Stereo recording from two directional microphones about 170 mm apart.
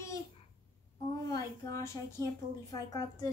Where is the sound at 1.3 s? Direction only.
15° left (ahead or behind).